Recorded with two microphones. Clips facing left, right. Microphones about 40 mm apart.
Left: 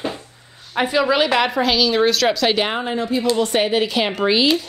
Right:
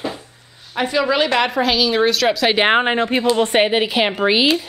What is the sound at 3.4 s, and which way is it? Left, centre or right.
Speech, right.